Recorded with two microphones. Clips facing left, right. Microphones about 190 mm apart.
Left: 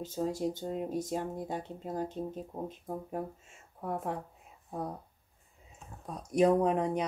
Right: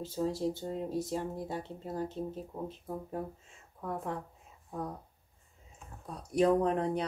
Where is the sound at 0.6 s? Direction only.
15° left (ahead or behind).